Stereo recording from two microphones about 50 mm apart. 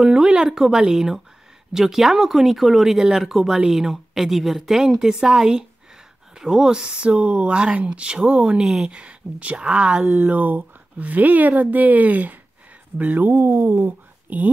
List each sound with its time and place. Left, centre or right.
0.0 s speech: centre
10.0 s speech: right